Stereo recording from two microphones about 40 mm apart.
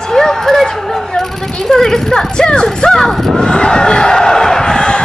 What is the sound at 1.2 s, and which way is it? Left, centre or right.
Speech, centre.